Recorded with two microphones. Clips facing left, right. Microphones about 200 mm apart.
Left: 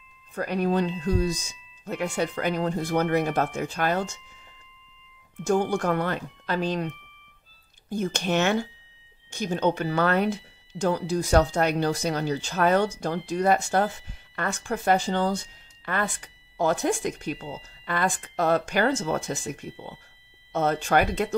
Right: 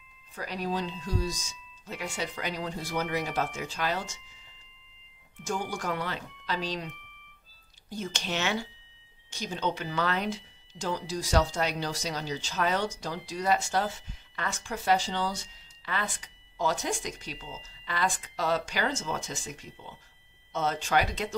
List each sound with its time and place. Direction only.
0.3 s speech: 55° left (ahead or behind)
7.9 s speech: 55° left (ahead or behind)